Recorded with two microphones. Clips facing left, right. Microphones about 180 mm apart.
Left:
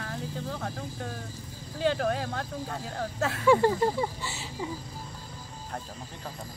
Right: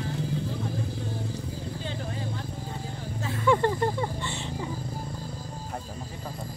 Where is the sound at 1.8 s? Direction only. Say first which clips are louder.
Left 13 dB; 75° left (ahead or behind).